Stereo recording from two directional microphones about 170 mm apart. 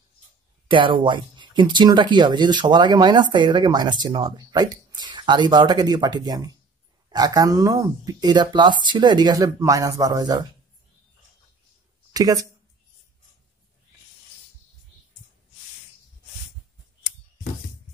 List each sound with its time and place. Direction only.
0.7 s speech: 30° right (ahead or behind)
12.1 s speech: 20° right (ahead or behind)